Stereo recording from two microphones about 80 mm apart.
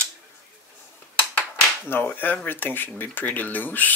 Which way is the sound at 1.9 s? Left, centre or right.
Left.